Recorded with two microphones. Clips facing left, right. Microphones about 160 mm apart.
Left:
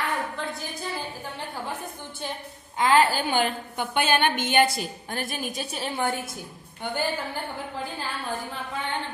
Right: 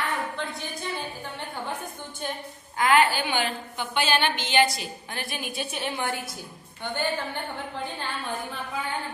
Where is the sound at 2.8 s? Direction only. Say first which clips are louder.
Left 1 dB; 35° left (ahead or behind).